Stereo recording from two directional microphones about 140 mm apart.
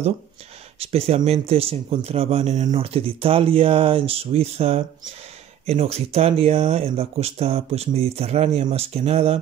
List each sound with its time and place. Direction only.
0.7 s speech: 45° right (ahead or behind)
2.7 s speech: 40° right (ahead or behind)
6.8 s speech: 45° right (ahead or behind)